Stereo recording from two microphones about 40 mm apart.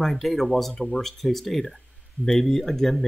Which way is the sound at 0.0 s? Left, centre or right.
Centre.